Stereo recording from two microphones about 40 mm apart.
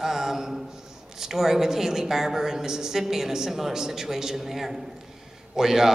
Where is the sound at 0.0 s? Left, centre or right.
Centre.